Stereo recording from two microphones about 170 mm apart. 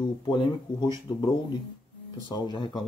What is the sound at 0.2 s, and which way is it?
Speech, 25° left (ahead or behind).